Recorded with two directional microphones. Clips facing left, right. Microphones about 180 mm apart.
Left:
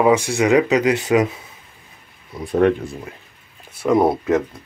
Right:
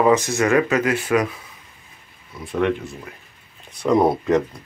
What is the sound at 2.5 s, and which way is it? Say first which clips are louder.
Speech: left 5 dB; 40° left (ahead or behind).